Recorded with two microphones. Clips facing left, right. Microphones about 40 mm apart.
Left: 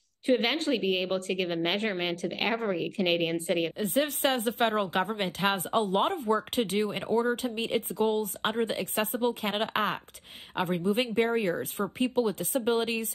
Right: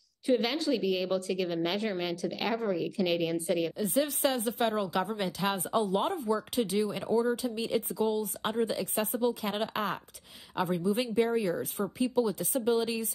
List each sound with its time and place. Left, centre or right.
0.3 s speech: left